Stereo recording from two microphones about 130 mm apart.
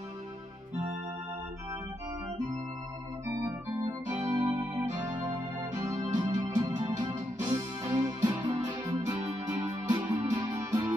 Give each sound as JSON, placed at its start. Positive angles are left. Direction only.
{"t": 3.4, "sound": "organ", "side_deg": -25}
{"t": 6.1, "sound": "music", "side_deg": -25}